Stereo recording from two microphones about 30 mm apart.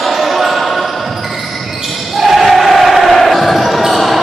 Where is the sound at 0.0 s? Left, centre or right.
Centre.